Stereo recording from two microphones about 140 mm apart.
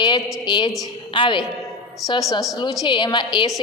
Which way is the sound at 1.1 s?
35° left (ahead or behind).